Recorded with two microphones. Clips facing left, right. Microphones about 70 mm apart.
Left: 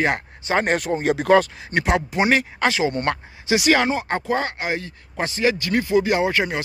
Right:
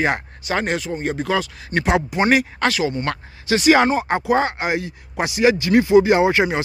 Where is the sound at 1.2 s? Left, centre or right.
Left.